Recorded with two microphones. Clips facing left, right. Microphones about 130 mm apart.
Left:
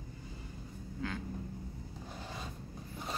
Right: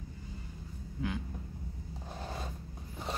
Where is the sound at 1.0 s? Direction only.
15° right (ahead or behind).